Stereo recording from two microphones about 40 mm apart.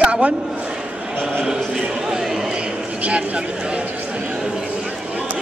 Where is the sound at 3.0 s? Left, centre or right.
Right.